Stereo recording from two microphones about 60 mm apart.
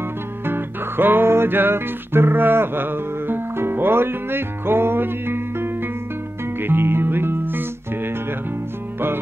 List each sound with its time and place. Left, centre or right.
0.5 s music: right